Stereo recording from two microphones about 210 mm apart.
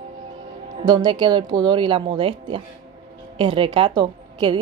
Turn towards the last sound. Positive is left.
turn(degrees=-25)  # may be behind; listen again after turning